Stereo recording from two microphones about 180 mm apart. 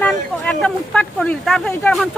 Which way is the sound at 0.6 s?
5° left (ahead or behind).